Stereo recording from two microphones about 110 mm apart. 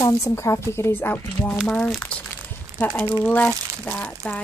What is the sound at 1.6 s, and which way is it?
Speech, 5° left (ahead or behind).